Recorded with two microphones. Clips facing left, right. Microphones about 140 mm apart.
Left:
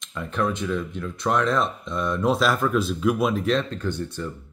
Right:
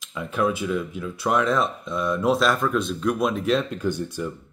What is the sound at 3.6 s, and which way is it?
Speech, 10° right (ahead or behind).